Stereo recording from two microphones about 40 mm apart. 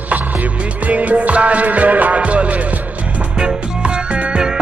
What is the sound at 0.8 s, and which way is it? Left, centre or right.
Music, right.